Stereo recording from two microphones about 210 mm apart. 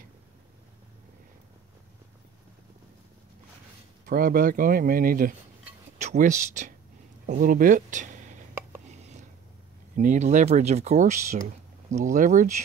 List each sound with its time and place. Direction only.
4.1 s speech: 45° right (ahead or behind)
9.9 s speech: 35° right (ahead or behind)